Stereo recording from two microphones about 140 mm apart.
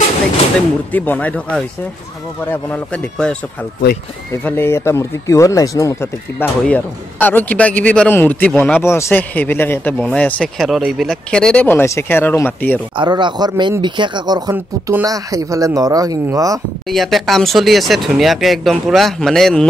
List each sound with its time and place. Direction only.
0.9 s speech: 10° left (ahead or behind)
6.6 s speech: 10° left (ahead or behind)
10.6 s speech: centre (ahead or behind)
12.9 s speech: 35° right (ahead or behind)
14.5 s speech: 15° right (ahead or behind)
15.0 s speech: 25° right (ahead or behind)
16.9 s speech: centre (ahead or behind)